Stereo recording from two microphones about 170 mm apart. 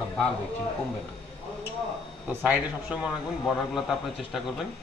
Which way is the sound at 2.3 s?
10° right (ahead or behind).